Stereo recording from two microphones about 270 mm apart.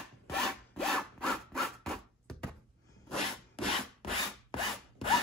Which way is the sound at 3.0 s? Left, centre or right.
Centre.